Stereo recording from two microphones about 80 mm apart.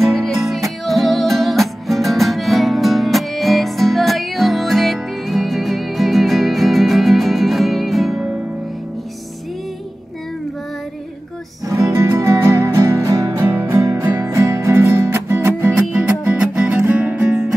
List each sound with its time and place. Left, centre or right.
0.0 s music: centre
11.6 s music: right
13.4 s music: right
14.1 s music: right
15.7 s music: centre